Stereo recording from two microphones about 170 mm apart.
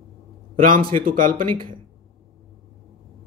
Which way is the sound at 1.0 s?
55° right (ahead or behind).